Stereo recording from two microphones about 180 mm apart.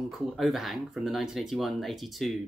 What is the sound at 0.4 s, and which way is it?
Speech, centre (ahead or behind).